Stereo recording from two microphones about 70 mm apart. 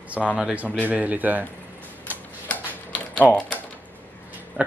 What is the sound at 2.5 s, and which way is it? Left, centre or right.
Mechanisms, centre.